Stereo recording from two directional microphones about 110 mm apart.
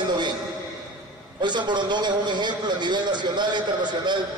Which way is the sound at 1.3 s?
45° right (ahead or behind).